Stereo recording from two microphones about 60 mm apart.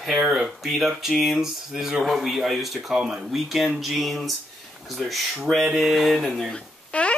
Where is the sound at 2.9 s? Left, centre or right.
Centre.